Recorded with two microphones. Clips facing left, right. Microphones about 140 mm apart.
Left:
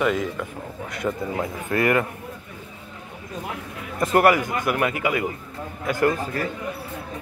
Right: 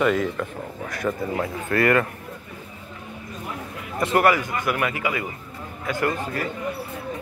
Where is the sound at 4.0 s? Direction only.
40° left (ahead or behind).